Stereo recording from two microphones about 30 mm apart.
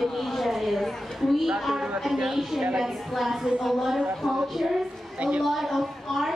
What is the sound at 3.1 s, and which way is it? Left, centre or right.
A woman's voice, centre.